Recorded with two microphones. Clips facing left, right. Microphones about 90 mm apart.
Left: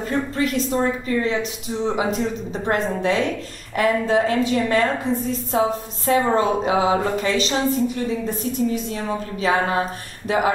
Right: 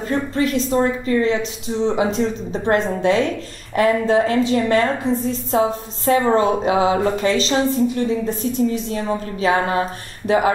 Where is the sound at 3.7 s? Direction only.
30° right (ahead or behind).